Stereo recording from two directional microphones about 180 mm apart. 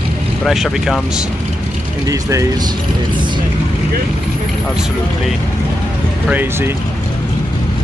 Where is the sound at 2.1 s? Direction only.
20° right (ahead or behind).